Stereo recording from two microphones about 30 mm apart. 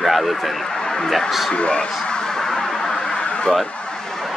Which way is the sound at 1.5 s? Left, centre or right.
Left.